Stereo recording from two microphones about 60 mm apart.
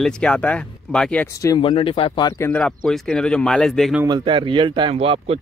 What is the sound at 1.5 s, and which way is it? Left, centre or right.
Speech, left.